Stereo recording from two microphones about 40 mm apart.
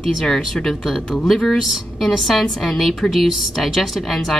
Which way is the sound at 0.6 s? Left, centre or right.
Left.